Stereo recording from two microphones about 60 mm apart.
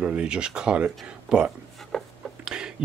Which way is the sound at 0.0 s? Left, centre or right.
Centre.